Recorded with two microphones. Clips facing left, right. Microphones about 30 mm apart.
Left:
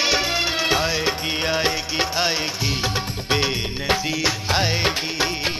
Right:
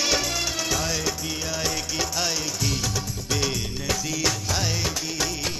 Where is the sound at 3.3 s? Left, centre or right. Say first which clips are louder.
Left 5 dB; left.